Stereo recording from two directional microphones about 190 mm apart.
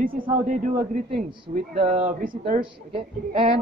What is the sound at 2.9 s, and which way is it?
Speech, 30° right (ahead or behind).